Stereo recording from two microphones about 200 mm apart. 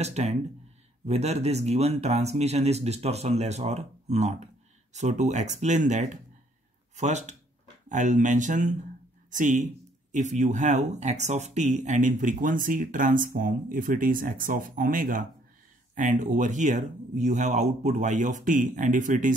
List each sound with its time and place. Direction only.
0.0 s speech: 35° right (ahead or behind)